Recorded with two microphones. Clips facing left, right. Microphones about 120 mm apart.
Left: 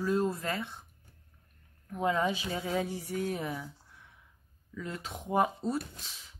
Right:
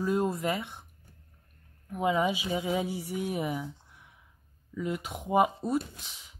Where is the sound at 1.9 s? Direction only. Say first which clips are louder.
Right 2 dB; 10° right (ahead or behind).